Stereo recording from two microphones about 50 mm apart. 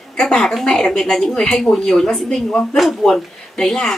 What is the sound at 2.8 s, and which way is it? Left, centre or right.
A woman's voice, centre.